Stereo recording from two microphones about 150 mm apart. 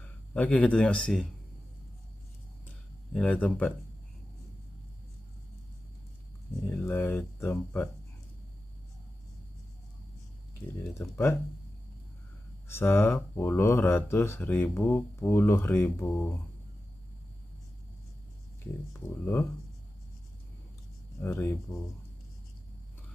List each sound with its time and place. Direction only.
0.0 s speech: 10° left (ahead or behind)
3.1 s speech: 10° left (ahead or behind)
6.7 s speech: 10° left (ahead or behind)
10.8 s speech: 15° left (ahead or behind)
12.6 s speech: 15° left (ahead or behind)
18.9 s speech: 15° left (ahead or behind)
21.2 s speech: 15° left (ahead or behind)